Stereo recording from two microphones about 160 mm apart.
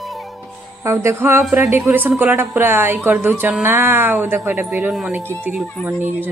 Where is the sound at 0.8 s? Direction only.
15° right (ahead or behind).